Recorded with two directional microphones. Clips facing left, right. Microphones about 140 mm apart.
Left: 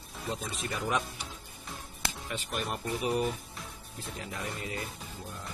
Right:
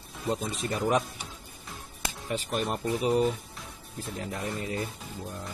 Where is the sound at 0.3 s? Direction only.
35° right (ahead or behind).